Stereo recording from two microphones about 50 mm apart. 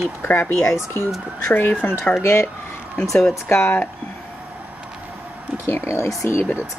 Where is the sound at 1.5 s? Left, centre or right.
Left.